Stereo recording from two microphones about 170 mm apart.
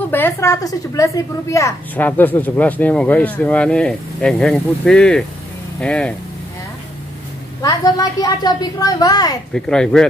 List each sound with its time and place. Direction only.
0.1 s a woman's voice: 15° left (ahead or behind)
7.6 s a woman's voice: 25° left (ahead or behind)
9.5 s speech: 5° left (ahead or behind)